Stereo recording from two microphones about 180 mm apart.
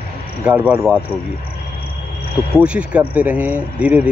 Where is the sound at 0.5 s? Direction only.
5° right (ahead or behind).